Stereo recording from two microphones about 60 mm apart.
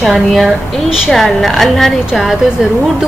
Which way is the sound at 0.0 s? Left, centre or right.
Centre.